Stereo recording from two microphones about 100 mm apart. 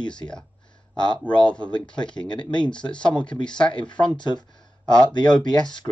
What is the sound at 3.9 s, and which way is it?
Speech, 50° left (ahead or behind).